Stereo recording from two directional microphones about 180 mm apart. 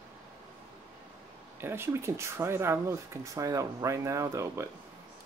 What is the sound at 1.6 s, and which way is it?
Speech, 15° right (ahead or behind).